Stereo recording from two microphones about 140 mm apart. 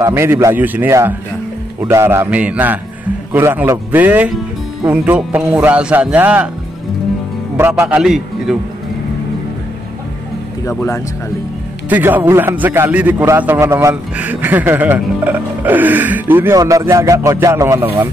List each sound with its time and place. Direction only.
0.0 s speech: 20° right (ahead or behind)
7.5 s speech: 15° right (ahead or behind)
11.9 s speech: 15° right (ahead or behind)
14.1 s speech: 10° right (ahead or behind)